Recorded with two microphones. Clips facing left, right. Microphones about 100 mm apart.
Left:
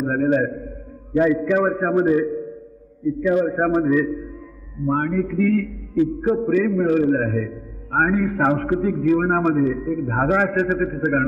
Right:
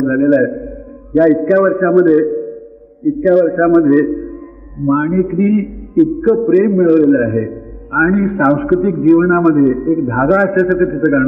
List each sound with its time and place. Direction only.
0.0 s a man's voice: 30° right (ahead or behind)